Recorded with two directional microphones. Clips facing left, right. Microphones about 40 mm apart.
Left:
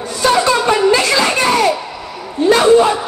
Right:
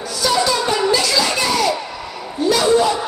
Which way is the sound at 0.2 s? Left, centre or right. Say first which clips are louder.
Left 5 dB; left.